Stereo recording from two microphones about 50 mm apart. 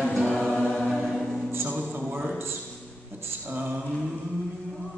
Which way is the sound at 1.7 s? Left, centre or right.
Right.